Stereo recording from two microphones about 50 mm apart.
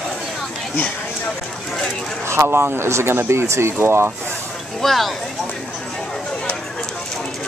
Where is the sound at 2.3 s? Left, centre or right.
Right.